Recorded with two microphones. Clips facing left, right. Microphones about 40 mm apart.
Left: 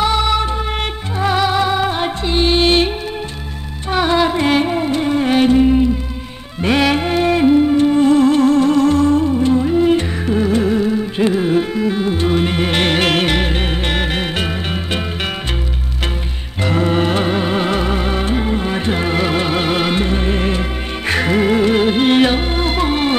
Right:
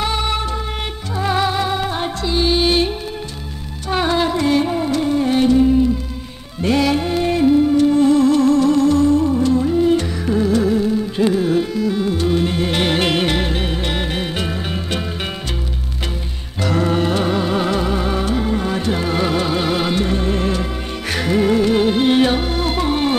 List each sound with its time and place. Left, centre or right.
0.2 s music: left
3.9 s music: left
16.6 s music: left